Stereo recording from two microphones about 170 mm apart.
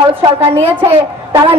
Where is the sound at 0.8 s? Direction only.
15° right (ahead or behind).